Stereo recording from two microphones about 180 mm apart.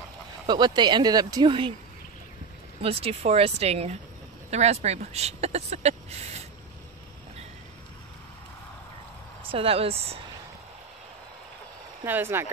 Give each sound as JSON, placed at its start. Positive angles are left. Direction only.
{"t": 0.5, "sound": "speech", "side_deg": -25}
{"t": 2.8, "sound": "speech", "side_deg": -35}
{"t": 9.4, "sound": "speech", "side_deg": -30}
{"t": 12.0, "sound": "speech", "side_deg": -10}